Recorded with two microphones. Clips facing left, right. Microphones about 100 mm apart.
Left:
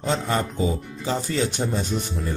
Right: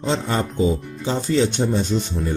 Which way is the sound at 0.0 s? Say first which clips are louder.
Right 2 dB; 30° right (ahead or behind).